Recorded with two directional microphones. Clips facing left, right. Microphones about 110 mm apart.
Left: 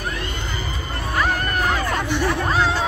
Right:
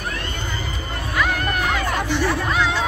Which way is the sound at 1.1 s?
35° left (ahead or behind).